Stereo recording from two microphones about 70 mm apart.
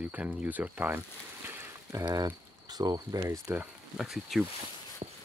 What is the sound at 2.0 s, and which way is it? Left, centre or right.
Speech, right.